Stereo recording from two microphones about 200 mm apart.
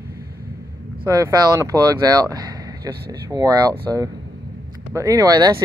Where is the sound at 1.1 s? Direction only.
15° right (ahead or behind).